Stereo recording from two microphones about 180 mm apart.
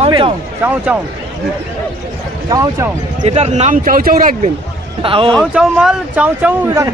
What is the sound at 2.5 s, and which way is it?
Speech, 20° right (ahead or behind).